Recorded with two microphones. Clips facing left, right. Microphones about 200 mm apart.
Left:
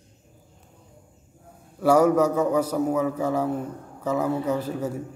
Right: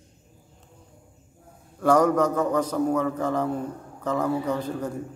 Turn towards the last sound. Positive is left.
turn(degrees=5)  # may be behind; listen again after turning